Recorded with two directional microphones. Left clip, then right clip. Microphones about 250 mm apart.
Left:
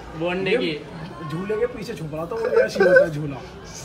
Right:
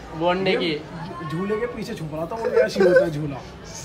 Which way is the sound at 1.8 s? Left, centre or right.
Centre.